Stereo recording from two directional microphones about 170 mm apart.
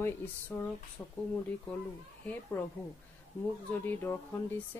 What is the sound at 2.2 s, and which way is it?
Speech, 10° left (ahead or behind).